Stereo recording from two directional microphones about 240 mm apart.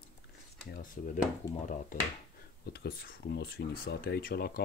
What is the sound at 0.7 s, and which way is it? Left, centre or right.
Speech, left.